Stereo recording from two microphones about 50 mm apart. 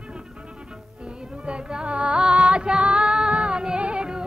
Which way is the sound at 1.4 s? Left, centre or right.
Centre.